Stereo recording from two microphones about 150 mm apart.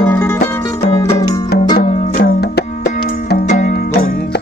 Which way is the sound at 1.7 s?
85° left.